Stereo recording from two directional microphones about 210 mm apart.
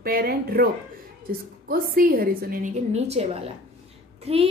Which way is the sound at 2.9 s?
30° right (ahead or behind).